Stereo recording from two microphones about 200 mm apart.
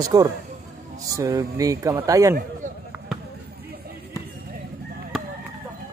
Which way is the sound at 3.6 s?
50° right (ahead or behind).